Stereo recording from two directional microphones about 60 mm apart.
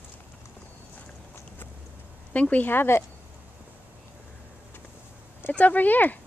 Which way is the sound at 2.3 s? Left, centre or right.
Left.